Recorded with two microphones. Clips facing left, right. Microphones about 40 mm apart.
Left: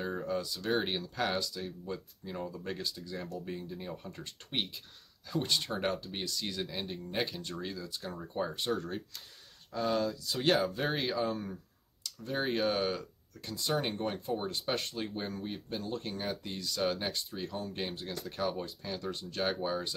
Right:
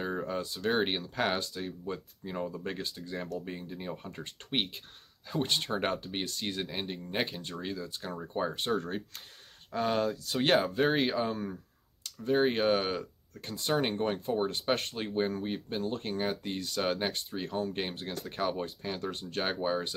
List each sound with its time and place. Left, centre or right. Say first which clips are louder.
0.0 s speech: right 1 dB; right
12.0 s speech: right 8 dB; right
13.0 s speech: right 2 dB; right